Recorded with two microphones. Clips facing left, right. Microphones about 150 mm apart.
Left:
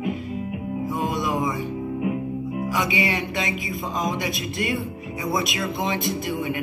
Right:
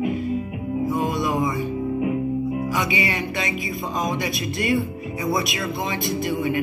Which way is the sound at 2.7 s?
15° left (ahead or behind).